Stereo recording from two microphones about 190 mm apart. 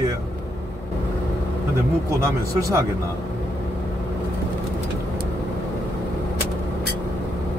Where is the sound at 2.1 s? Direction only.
15° right (ahead or behind).